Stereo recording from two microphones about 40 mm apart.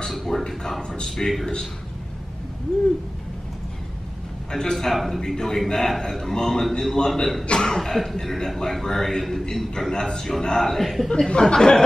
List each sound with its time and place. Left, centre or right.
0.1 s a sound: centre
0.5 s a man's voice: centre
0.8 s a man's voice: left
4.5 s a man's voice: centre
4.9 s a man's voice: centre
5.2 s a man's voice: centre
7.9 s a man's voice: centre
11.2 s speech: left